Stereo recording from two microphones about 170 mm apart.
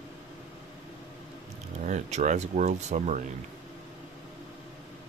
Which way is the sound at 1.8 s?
45° right (ahead or behind).